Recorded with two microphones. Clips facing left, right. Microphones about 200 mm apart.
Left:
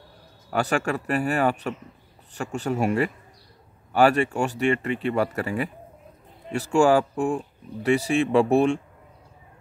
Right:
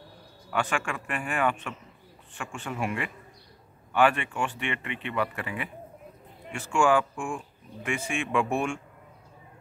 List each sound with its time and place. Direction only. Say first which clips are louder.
0.5 s speech: left 6 dB; 40° left (ahead or behind)